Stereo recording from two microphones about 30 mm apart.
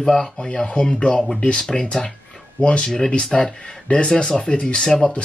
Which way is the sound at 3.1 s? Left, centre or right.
Left.